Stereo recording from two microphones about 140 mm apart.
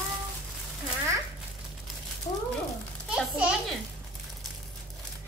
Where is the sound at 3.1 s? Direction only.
5° right (ahead or behind).